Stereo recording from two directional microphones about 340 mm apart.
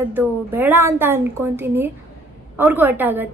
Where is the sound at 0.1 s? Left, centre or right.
Centre.